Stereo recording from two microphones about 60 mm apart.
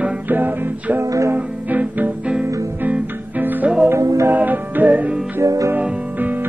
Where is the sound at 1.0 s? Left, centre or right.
Right.